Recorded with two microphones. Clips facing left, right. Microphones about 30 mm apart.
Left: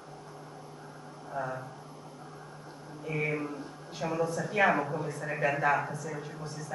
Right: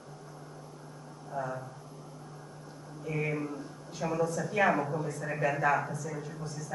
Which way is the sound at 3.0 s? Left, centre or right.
Centre.